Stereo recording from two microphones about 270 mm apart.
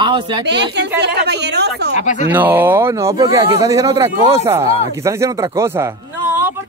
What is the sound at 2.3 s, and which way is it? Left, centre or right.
Speech, centre.